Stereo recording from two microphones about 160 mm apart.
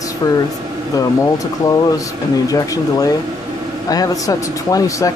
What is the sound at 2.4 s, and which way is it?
Speech, 20° left (ahead or behind).